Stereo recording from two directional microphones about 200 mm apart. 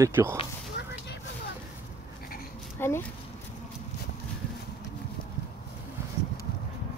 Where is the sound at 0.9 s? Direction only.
60° left (ahead or behind).